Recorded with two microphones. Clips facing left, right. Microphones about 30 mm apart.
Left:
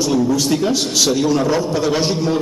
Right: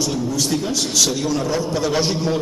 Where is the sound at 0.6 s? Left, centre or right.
Left.